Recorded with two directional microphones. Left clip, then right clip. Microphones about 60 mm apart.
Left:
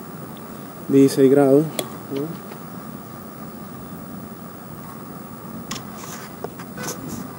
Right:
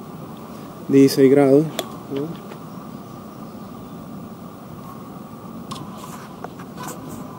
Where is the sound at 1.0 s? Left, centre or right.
Right.